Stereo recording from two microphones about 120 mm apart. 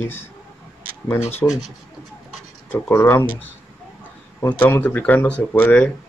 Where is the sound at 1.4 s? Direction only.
25° left (ahead or behind).